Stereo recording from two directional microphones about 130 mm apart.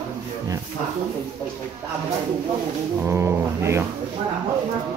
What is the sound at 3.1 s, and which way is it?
Music, 20° right (ahead or behind).